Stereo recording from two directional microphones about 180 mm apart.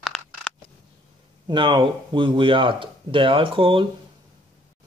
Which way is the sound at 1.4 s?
25° right (ahead or behind).